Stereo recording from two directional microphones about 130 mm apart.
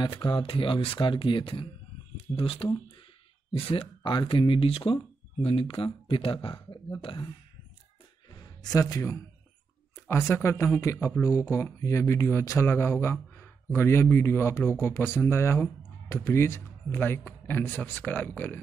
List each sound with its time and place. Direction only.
0.0 s speech: 35° left (ahead or behind)
8.3 s a sound: 30° left (ahead or behind)
10.0 s speech: 20° left (ahead or behind)